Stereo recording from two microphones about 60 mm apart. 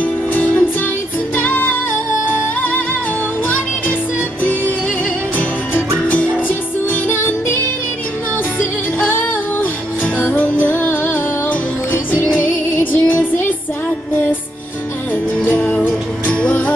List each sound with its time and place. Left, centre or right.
0.0 s music: left
4.4 s music: left
7.2 s music: left
10.1 s music: left
15.6 s music: centre